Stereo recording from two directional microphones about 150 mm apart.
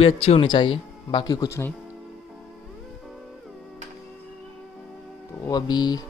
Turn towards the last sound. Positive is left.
turn(degrees=25)  # may be behind; listen again after turning